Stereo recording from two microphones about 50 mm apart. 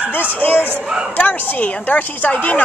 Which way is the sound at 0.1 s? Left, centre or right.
Left.